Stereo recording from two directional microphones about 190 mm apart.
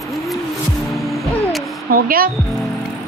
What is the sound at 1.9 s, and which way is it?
Speech, 50° right (ahead or behind).